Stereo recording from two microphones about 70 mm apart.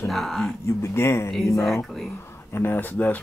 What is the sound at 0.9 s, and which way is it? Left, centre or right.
Speech, left.